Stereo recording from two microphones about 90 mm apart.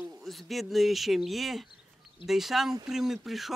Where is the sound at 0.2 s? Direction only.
Centre (ahead or behind).